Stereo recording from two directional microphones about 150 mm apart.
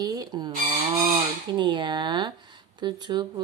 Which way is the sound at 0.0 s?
25° right (ahead or behind).